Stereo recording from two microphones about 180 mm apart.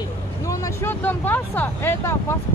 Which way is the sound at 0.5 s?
15° left (ahead or behind).